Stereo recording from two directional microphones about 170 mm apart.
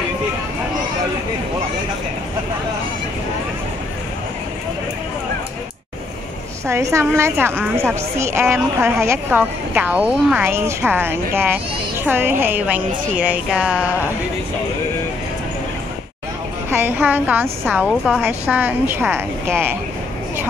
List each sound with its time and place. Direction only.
6.7 s a woman's voice: 15° right (ahead or behind)
16.7 s a woman's voice: 10° right (ahead or behind)